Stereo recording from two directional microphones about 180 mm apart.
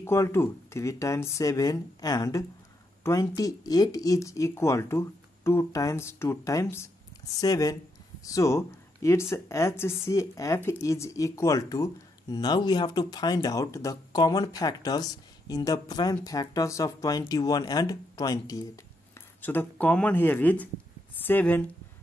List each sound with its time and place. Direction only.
0.0 s speech: 15° left (ahead or behind)